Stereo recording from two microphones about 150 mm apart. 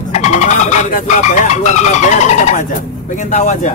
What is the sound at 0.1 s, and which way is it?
Speech, 50° left (ahead or behind).